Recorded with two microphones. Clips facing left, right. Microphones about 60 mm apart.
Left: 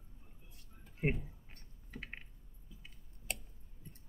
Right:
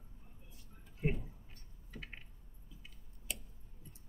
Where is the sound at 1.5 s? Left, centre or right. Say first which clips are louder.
Left 2 dB; left.